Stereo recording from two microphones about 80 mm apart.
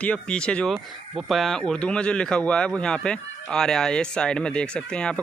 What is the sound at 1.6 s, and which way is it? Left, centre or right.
Speech, centre.